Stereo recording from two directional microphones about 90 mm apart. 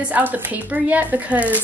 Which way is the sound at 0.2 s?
15° right (ahead or behind).